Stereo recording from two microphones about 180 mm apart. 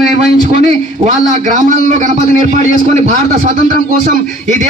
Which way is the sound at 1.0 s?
45° right (ahead or behind).